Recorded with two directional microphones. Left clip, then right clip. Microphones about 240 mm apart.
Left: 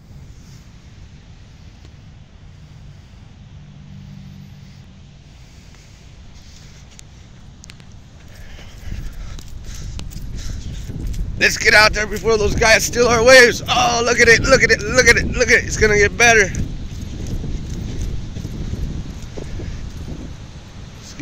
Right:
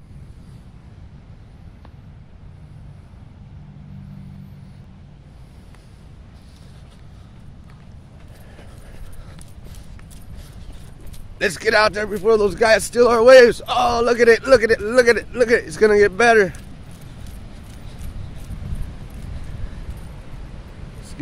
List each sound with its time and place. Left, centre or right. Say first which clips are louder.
11.3 s speech: left 5 dB; right